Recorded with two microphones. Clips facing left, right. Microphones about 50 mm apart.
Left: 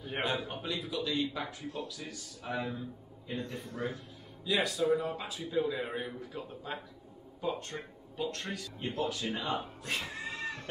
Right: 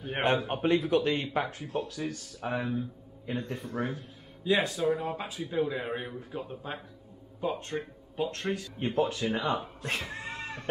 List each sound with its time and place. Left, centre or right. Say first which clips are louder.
0.0 s a man's voice: right 6 dB; right
8.5 s speech: right 7 dB; right
10.1 s cat: right 1 dB; right